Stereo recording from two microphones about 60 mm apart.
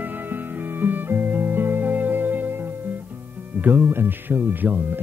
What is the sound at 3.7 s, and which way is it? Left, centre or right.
Music, right.